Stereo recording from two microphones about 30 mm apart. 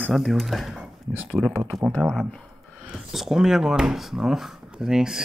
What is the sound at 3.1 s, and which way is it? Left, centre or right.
Speech, centre.